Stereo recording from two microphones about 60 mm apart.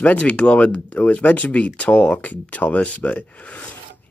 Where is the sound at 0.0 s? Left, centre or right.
Left.